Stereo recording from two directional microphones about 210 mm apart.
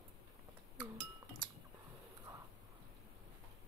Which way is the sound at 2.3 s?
20° right (ahead or behind).